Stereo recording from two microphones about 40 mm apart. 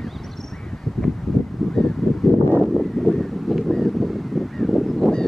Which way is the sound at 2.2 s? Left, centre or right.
Centre.